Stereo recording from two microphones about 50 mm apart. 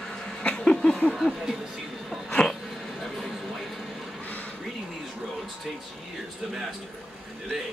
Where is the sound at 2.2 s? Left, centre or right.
Centre.